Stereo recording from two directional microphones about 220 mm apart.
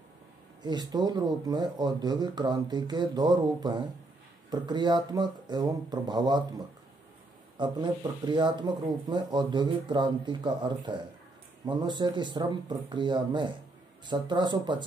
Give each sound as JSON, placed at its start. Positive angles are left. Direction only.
{"t": 0.6, "sound": "speech", "side_deg": -20}